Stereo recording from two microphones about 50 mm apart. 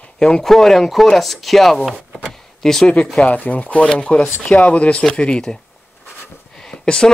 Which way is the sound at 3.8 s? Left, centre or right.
Centre.